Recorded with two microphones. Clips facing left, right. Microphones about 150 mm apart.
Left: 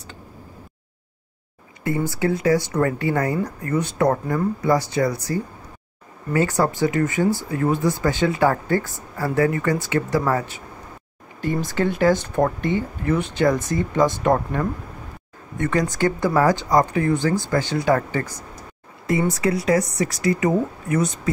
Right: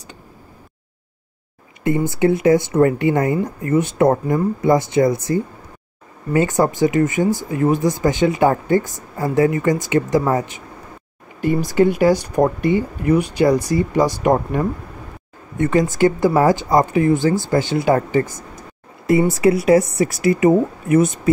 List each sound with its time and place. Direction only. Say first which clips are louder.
1.9 s speech: right 5 dB; 20° right (ahead or behind)
19.3 s speech: right 6 dB; 25° right (ahead or behind)